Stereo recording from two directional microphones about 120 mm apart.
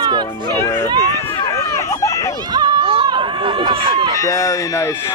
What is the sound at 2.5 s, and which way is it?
Run, 35° right (ahead or behind).